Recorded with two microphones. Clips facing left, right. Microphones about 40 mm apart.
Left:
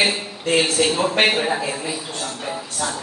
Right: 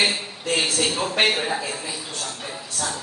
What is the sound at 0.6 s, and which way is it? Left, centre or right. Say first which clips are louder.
A man's voice: left 5 dB; centre.